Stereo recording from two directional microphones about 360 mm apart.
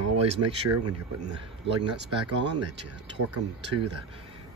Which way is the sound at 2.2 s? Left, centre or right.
Right.